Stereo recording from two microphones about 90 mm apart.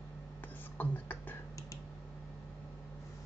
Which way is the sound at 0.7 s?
20° left (ahead or behind).